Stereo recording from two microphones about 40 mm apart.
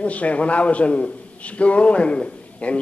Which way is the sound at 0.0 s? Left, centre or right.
Left.